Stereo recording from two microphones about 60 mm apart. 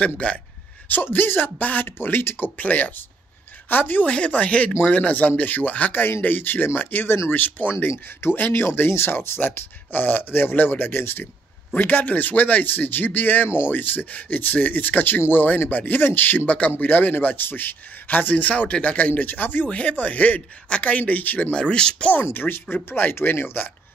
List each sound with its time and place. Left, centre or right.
0.0 s a man's voice: left
0.8 s speech: left
4.1 s a man's voice: left
7.9 s a man's voice: left; by 22.1 s centre
22.1 s speech: left